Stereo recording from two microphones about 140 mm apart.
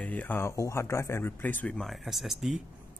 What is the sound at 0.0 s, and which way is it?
Speech, 10° left (ahead or behind).